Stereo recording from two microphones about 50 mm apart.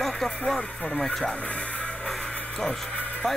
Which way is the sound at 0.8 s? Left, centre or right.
Left.